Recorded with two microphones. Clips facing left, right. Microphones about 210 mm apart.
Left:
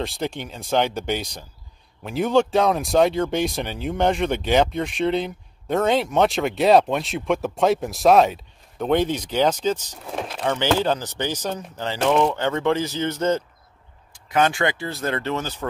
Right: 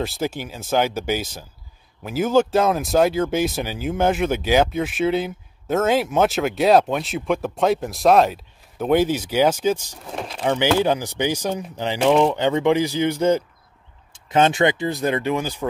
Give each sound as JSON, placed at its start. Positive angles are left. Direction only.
{"t": 0.0, "sound": "speech", "side_deg": -5}
{"t": 10.1, "sound": "speech", "side_deg": 0}
{"t": 10.5, "sound": "speech", "side_deg": -10}
{"t": 14.1, "sound": "speech", "side_deg": -25}